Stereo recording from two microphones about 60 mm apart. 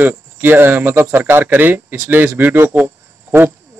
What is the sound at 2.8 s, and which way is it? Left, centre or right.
Cricket, right.